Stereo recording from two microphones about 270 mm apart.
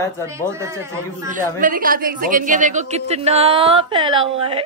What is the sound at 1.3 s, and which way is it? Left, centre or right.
A woman's voice, right.